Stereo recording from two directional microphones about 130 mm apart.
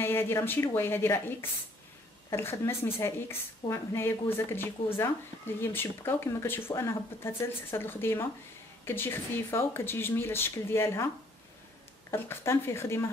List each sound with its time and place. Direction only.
0.0 s speech: 20° left (ahead or behind)
12.1 s speech: 20° left (ahead or behind)